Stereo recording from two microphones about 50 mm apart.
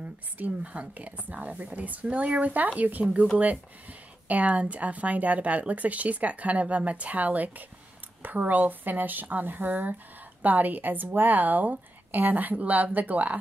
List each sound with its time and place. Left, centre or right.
0.4 s speech: right
4.3 s speech: right